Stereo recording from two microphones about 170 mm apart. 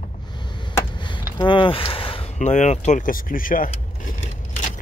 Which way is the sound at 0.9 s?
30° left (ahead or behind).